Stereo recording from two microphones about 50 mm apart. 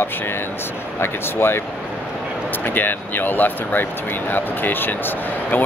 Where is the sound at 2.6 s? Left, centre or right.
Left.